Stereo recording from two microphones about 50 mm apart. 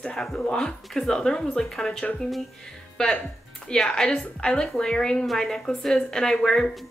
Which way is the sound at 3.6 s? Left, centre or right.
Centre.